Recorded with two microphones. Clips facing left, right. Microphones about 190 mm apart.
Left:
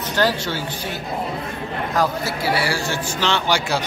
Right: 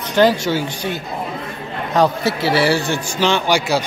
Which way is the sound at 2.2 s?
70° right (ahead or behind).